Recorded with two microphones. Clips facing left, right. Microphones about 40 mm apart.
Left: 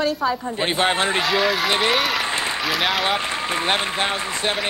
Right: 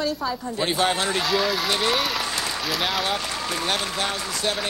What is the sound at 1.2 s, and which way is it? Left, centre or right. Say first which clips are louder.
Speech: left 3 dB; centre.